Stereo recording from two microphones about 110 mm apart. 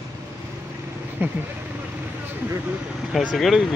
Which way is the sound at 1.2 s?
20° right (ahead or behind).